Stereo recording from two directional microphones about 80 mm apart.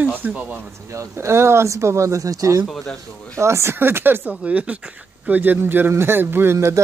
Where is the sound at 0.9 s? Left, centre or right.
Right.